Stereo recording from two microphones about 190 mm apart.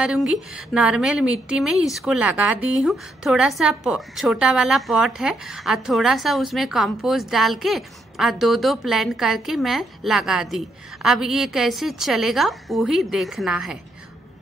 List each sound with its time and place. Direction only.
0.0 s a woman's voice: 5° right (ahead or behind)